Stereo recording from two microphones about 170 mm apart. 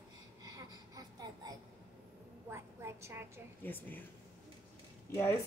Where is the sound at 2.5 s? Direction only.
15° right (ahead or behind).